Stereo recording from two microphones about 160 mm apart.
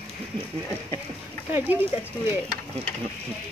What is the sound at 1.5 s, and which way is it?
Speech, 10° right (ahead or behind).